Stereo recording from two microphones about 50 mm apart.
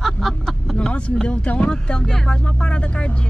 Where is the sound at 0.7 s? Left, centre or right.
Left.